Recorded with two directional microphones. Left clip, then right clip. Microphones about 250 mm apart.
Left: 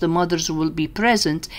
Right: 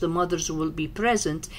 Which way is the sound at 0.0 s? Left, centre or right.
Left.